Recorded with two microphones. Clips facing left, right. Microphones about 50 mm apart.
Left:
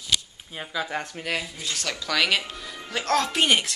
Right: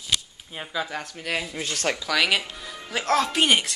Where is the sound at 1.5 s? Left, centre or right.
Right.